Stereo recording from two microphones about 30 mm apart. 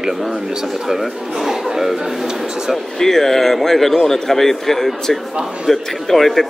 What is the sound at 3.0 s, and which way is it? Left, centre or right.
A man's voice, centre.